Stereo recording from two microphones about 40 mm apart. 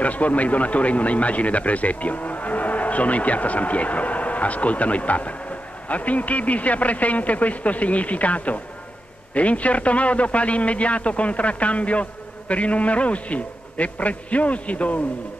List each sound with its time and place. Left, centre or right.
0.0 s speech: left